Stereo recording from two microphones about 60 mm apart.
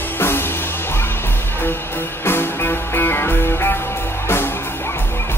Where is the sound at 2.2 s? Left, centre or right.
Left.